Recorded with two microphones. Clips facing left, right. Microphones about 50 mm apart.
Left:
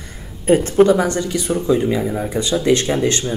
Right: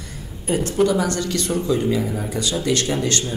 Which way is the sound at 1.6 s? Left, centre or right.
Left.